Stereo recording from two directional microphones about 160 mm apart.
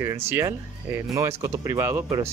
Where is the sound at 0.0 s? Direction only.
15° right (ahead or behind).